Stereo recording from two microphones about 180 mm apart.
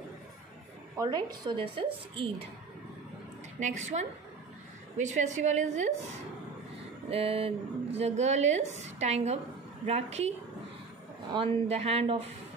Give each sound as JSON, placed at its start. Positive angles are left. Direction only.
{"t": 0.9, "sound": "a woman's voice", "side_deg": -25}
{"t": 3.5, "sound": "speech", "side_deg": -40}
{"t": 7.1, "sound": "speech", "side_deg": -35}
{"t": 11.3, "sound": "speech", "side_deg": -35}